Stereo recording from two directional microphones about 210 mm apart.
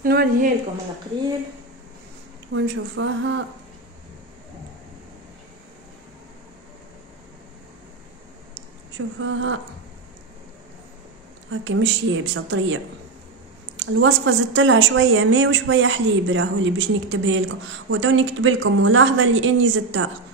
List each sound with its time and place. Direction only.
0.0 s a woman's voice: 45° right (ahead or behind)
2.5 s speech: 60° right (ahead or behind)
9.2 s a woman's voice: 65° right (ahead or behind)
11.6 s a woman's voice: 65° right (ahead or behind)